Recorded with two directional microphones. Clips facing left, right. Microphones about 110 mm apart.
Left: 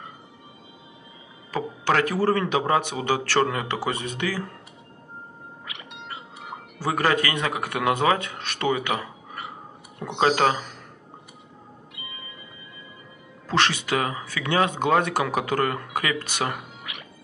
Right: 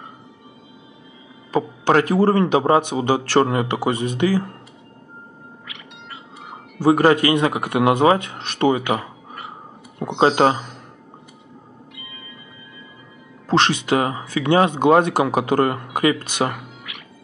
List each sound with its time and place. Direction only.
2.0 s speech: 25° right (ahead or behind)
6.8 s speech: 25° right (ahead or behind)
13.5 s speech: 20° right (ahead or behind)